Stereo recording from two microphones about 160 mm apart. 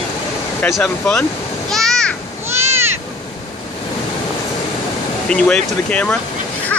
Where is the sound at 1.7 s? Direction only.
5° left (ahead or behind).